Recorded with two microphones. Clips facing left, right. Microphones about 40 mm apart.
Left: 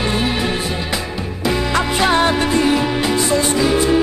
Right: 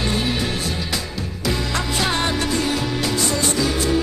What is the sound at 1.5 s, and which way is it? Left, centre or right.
Music, centre.